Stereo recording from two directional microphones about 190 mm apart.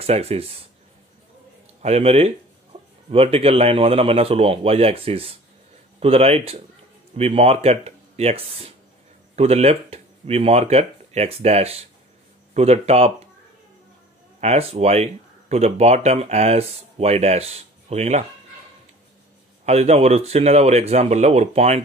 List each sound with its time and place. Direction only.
0.0 s speech: 30° right (ahead or behind)
1.8 s speech: 35° right (ahead or behind)
2.7 s a sound: 35° right (ahead or behind)
3.1 s speech: 30° right (ahead or behind)
14.4 s speech: 35° right (ahead or behind)
19.6 s speech: 35° right (ahead or behind)